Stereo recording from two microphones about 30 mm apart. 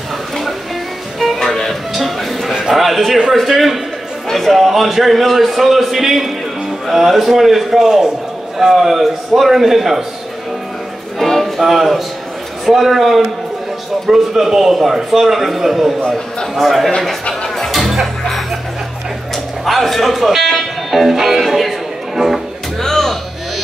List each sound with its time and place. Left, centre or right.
1.4 s music: centre
2.0 s music: centre
2.7 s a sound: centre
3.3 s a man's voice: centre
7.8 s a man's voice: centre
8.7 s a man's voice: centre
11.1 s a sound: centre
11.6 s a man's voice: centre
17.6 s music: centre
19.6 s a man's voice: centre
22.8 s music: centre